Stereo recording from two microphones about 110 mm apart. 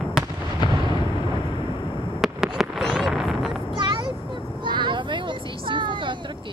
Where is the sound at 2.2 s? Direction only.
5° right (ahead or behind).